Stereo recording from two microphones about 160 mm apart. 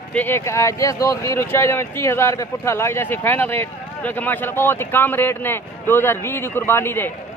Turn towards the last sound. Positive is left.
turn(degrees=15)  # may be behind; listen again after turning